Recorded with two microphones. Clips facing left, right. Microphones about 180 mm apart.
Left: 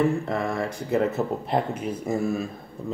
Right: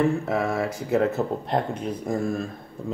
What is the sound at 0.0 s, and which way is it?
Speech, centre (ahead or behind).